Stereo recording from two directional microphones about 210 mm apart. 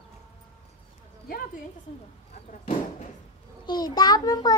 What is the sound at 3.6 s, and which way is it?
Speech, 20° left (ahead or behind).